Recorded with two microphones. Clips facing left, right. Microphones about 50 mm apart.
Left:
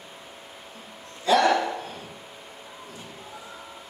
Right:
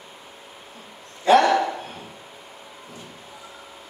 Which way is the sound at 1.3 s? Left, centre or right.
Right.